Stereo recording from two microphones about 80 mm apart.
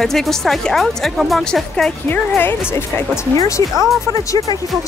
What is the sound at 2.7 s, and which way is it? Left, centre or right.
Speech, left.